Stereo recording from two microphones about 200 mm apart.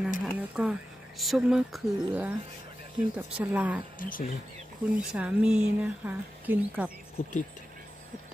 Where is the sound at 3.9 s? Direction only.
45° left (ahead or behind).